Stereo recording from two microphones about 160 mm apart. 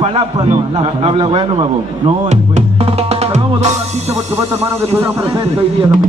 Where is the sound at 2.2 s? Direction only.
40° right (ahead or behind).